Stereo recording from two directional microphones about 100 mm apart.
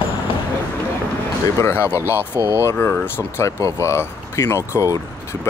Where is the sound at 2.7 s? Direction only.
20° left (ahead or behind).